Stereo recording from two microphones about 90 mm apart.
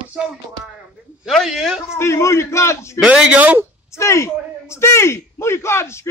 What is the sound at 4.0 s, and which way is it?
A man's voice, 30° left (ahead or behind).